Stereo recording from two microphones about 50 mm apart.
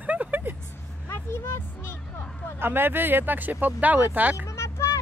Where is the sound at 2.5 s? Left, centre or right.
Right.